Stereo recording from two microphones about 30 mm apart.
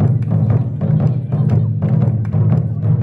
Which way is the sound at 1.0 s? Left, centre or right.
Right.